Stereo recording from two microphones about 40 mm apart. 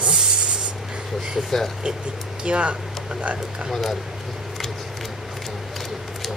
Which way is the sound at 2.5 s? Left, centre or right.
Right.